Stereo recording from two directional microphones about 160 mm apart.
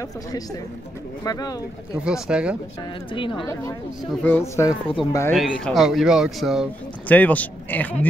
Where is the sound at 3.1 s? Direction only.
30° left (ahead or behind).